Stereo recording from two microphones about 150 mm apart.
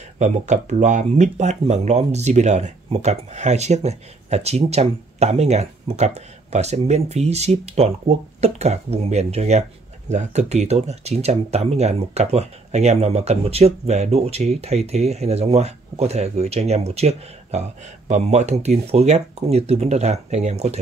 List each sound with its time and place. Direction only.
0.2 s speech: 50° right (ahead or behind)